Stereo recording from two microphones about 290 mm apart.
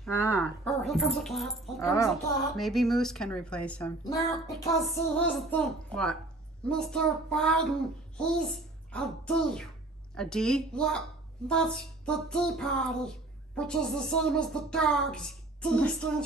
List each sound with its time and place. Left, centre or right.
0.0 s a woman's voice: centre
6.7 s a woman's voice: centre